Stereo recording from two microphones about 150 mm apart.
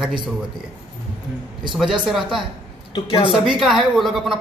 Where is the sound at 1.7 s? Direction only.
5° right (ahead or behind).